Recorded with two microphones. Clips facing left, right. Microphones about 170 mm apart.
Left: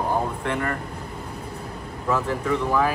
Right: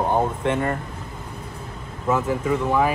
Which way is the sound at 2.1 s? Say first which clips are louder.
Right 2 dB; 15° right (ahead or behind).